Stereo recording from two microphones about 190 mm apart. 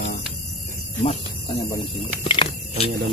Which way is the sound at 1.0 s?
30° left (ahead or behind).